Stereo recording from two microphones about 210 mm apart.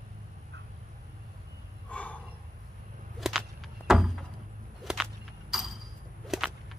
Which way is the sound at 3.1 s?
Centre (ahead or behind).